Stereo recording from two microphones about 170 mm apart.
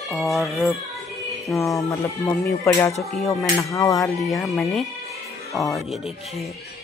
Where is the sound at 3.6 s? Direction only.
20° left (ahead or behind).